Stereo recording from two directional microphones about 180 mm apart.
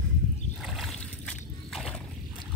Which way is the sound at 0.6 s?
Centre (ahead or behind).